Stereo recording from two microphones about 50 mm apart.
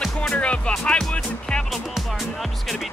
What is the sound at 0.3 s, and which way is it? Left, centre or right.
Music, left.